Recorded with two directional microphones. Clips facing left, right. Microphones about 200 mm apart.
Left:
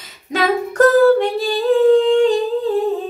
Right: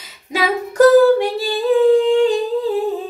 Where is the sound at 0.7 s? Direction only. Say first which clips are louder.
Right 2 dB; 5° right (ahead or behind).